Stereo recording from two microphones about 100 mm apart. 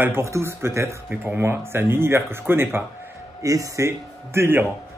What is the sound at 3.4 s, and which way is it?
Speech, 35° right (ahead or behind).